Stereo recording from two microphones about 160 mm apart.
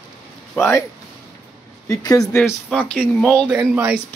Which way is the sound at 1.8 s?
20° left (ahead or behind).